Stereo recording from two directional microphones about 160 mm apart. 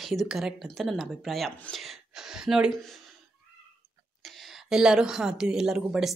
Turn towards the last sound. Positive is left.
turn(degrees=-5)  # may be behind; listen again after turning